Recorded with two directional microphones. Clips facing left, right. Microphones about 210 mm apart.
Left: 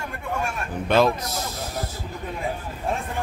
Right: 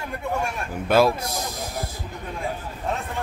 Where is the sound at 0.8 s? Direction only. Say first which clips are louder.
Right 1 dB; 10° right (ahead or behind).